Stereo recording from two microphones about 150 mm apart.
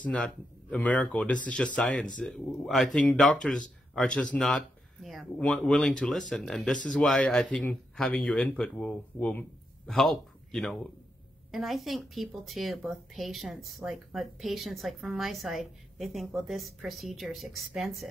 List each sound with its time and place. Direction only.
0.0 s speech: 5° left (ahead or behind)